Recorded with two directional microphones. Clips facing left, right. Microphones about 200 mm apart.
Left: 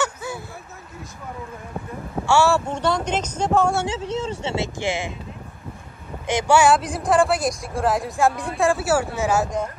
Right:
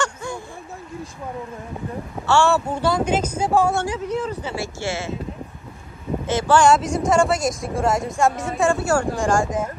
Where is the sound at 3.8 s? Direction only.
25° left (ahead or behind).